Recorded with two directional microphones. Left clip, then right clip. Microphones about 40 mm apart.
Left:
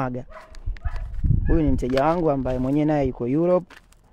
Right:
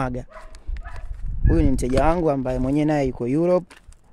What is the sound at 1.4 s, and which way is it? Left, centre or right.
Speech, right.